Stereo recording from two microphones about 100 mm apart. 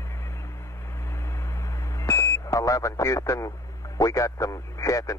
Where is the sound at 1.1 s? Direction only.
25° left (ahead or behind).